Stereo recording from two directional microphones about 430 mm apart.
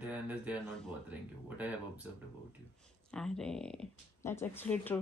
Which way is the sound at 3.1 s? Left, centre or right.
Centre.